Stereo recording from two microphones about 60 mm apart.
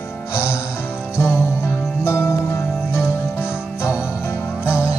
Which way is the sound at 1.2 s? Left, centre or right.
Left.